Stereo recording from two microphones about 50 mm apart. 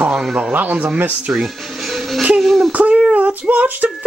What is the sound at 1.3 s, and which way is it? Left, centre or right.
Speech, centre.